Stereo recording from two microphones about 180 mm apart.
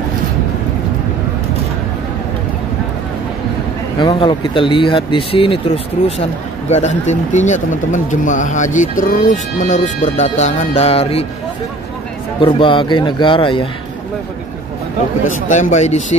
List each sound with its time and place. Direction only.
4.0 s speech: 25° left (ahead or behind)
6.7 s speech: 40° left (ahead or behind)
12.4 s speech: 30° left (ahead or behind)
15.3 s speech: 45° left (ahead or behind)